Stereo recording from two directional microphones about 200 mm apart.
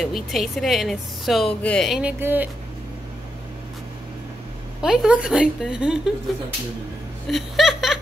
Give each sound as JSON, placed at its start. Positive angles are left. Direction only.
{"t": 0.0, "sound": "speech", "side_deg": 0}
{"t": 4.8, "sound": "speech", "side_deg": -5}
{"t": 7.2, "sound": "chuckle", "side_deg": 0}